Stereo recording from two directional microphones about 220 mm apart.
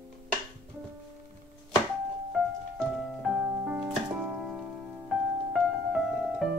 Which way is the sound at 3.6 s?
5° right (ahead or behind).